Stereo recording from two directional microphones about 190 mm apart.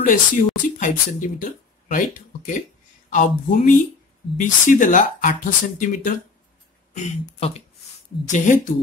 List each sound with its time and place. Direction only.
0.0 s speech: 45° left (ahead or behind)
6.9 s speech: 30° left (ahead or behind)
8.3 s speech: 40° left (ahead or behind)